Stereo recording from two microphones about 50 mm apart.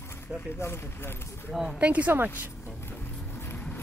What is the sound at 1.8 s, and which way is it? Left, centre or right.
Speech, right.